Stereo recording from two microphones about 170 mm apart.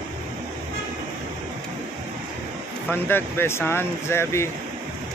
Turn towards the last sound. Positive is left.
turn(degrees=15)  # may be behind; listen again after turning